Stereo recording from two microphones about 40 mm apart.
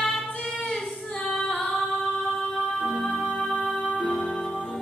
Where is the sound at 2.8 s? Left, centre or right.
Centre.